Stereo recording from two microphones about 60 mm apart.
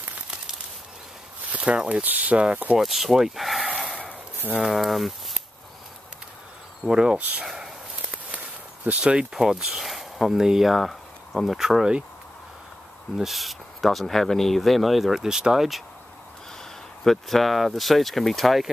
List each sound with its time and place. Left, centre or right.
1.5 s speech: right
2.8 s speech: centre
3.7 s a sound: centre
4.6 s speech: centre
6.8 s speech: centre
7.2 s speech: right
7.4 s a sound: centre
8.3 s a sound: right
9.3 s speech: centre
13.2 s speech: centre
17.0 s speech: centre